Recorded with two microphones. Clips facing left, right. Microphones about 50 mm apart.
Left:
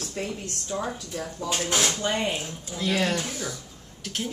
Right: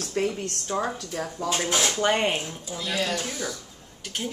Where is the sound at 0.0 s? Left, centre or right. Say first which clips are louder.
Right 5 dB; right.